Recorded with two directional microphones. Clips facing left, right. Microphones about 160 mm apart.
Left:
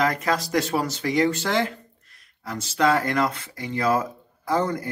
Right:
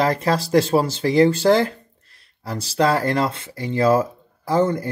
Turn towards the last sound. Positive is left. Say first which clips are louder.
# right 5 dB
turn(degrees=-25)  # may be behind; listen again after turning